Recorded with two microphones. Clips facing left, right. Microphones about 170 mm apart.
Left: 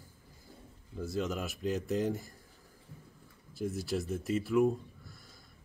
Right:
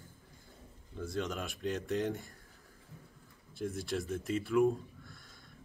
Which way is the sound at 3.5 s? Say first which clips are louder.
Left 2 dB; 5° left (ahead or behind).